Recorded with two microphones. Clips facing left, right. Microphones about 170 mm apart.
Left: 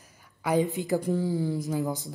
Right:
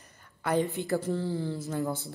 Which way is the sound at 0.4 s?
15° left (ahead or behind).